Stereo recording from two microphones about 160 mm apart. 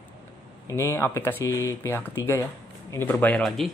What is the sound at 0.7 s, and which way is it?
Speech, 15° left (ahead or behind).